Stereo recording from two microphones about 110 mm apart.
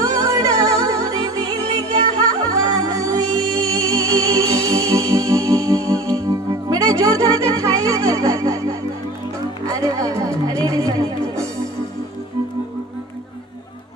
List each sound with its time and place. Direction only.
0.0 s music: 30° right (ahead or behind)
2.5 s music: 30° right (ahead or behind)